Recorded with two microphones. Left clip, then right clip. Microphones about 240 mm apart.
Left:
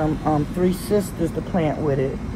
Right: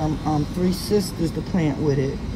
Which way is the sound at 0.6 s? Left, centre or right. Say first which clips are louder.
Left 1 dB; centre.